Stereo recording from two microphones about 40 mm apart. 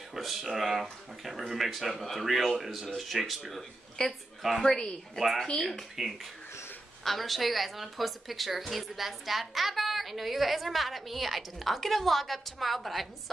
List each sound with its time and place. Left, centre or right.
0.1 s a woman's voice: centre
4.6 s speech: centre
5.2 s a woman's voice: centre